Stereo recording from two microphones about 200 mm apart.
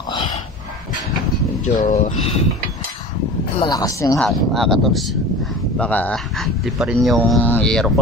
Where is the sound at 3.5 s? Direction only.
20° left (ahead or behind).